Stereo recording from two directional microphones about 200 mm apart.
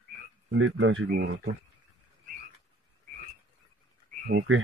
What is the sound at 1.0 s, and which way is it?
Speech, 50° right (ahead or behind).